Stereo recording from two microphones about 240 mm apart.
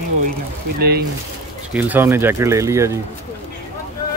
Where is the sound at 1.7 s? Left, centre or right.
Centre.